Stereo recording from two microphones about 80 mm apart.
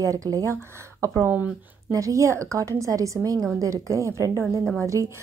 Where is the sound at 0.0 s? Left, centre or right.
Right.